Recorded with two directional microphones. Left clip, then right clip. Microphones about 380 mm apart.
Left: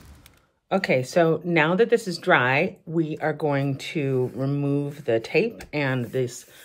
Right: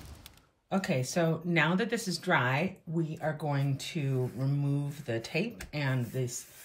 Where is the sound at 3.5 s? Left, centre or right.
Centre.